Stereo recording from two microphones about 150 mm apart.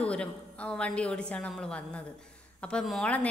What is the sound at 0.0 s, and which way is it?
Speech, 10° left (ahead or behind).